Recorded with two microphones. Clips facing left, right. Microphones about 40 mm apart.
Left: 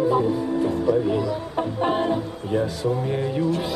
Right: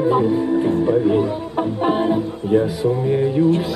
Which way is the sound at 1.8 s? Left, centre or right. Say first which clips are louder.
Right 4 dB; centre.